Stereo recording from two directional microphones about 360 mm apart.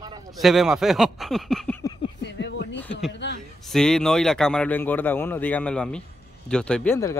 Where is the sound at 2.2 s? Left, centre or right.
Left.